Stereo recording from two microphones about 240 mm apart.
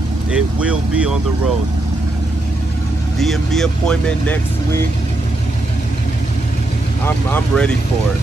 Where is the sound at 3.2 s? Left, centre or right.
Centre.